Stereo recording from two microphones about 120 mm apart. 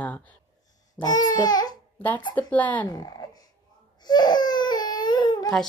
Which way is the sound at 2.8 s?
30° left (ahead or behind).